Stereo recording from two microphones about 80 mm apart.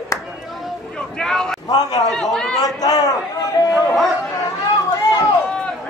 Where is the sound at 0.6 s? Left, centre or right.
Centre.